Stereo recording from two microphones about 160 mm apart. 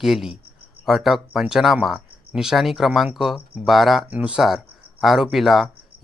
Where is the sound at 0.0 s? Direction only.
Centre (ahead or behind).